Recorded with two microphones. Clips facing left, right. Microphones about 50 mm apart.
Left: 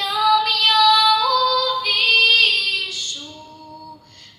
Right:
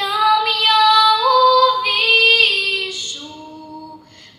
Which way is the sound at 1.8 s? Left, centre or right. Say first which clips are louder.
Right 2 dB; right.